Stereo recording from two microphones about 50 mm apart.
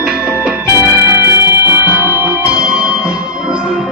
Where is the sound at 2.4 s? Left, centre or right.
Centre.